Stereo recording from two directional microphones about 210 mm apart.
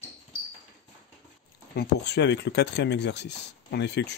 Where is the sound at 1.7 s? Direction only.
50° left (ahead or behind).